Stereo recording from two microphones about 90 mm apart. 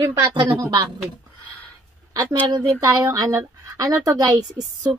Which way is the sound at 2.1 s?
45° right (ahead or behind).